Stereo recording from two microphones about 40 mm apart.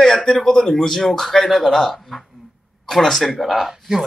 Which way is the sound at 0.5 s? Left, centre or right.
Centre.